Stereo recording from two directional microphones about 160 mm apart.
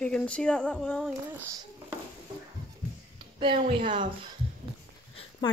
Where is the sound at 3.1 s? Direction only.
30° right (ahead or behind).